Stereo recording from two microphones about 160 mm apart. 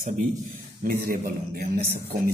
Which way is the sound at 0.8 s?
60° right (ahead or behind).